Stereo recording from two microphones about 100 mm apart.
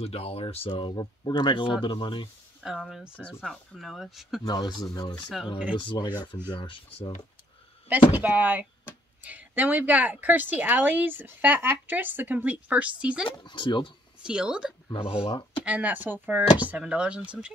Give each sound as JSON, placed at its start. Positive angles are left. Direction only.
{"t": 0.0, "sound": "speech", "side_deg": 90}
{"t": 0.7, "sound": "speech", "side_deg": 55}
{"t": 2.6, "sound": "speech", "side_deg": -5}
{"t": 4.5, "sound": "speech", "side_deg": 45}
{"t": 5.8, "sound": "speech", "side_deg": 55}
{"t": 8.2, "sound": "a woman's voice", "side_deg": -15}
{"t": 13.4, "sound": "speech", "side_deg": 55}
{"t": 14.2, "sound": "a woman's voice", "side_deg": -10}
{"t": 14.9, "sound": "speech", "side_deg": 65}
{"t": 15.6, "sound": "a woman's voice", "side_deg": -15}